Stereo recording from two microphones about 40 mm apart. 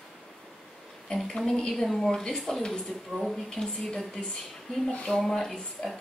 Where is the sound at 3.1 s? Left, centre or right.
Centre.